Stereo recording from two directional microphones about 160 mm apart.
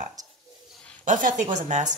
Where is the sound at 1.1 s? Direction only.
55° right (ahead or behind).